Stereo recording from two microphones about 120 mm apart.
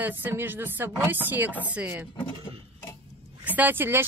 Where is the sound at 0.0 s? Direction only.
15° right (ahead or behind).